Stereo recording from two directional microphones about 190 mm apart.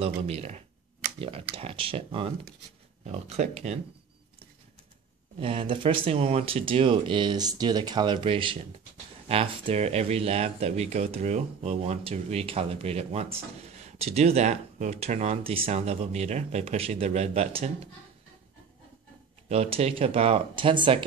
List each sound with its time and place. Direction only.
0.0 s speech: 35° right (ahead or behind)
5.4 s speech: 30° right (ahead or behind)
19.5 s speech: 30° right (ahead or behind)